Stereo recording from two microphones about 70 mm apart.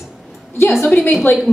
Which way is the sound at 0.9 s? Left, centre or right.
Centre.